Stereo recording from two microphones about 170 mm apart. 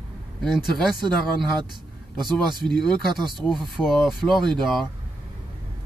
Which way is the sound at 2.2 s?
Centre (ahead or behind).